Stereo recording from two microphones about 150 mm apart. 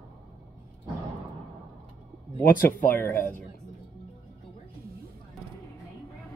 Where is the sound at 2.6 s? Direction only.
15° left (ahead or behind).